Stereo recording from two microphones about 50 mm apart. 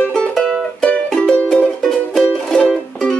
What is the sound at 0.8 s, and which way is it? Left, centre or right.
Music, centre.